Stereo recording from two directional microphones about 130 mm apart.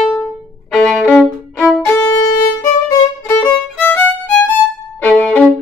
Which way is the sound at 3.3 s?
15° left (ahead or behind).